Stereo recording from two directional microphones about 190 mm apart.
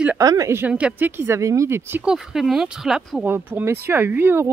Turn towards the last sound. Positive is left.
turn(degrees=-10)  # may be behind; listen again after turning